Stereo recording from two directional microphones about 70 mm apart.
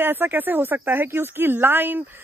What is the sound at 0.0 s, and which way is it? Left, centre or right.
Speech, right.